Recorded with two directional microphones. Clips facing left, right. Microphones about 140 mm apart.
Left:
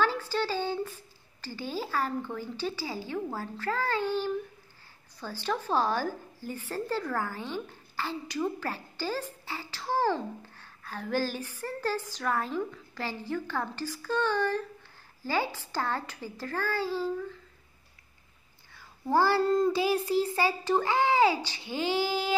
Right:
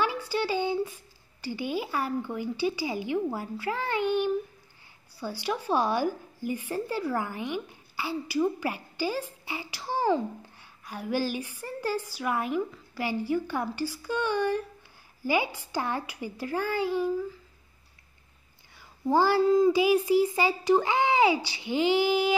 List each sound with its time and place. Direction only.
0.0 s a woman's voice: 15° right (ahead or behind)
19.0 s a woman's voice: 15° right (ahead or behind)
19.4 s child singing: centre (ahead or behind)
19.7 s a woman's voice: 15° right (ahead or behind)